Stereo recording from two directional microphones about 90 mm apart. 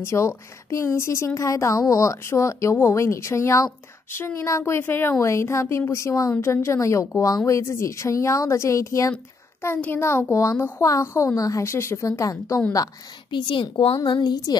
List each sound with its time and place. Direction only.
0.0 s a woman's voice: 30° left (ahead or behind)
13.3 s a woman's voice: 60° left (ahead or behind)